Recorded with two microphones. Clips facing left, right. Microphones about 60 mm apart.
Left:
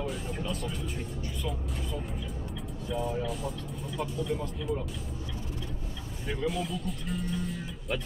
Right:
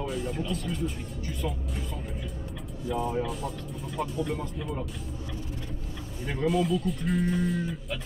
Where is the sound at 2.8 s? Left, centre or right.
Right.